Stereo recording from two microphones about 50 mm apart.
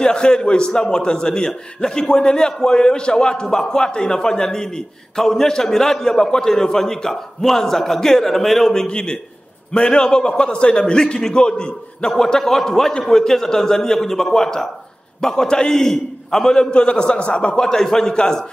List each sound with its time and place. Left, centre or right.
0.0 s a man's voice: centre
8.8 s a man's voice: centre
11.0 s a man's voice: centre